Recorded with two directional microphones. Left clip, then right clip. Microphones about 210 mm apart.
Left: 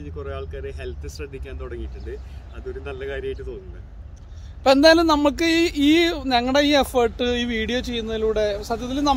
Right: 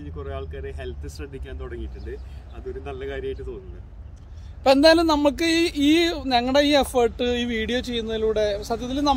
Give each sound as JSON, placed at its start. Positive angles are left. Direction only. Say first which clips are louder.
{"t": 0.0, "sound": "speech", "louder": "left 2 dB", "side_deg": -20}
{"t": 4.6, "sound": "speech", "louder": "left 1 dB", "side_deg": 10}